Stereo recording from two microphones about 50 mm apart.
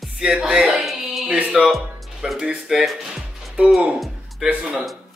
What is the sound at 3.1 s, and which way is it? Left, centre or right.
Music, right.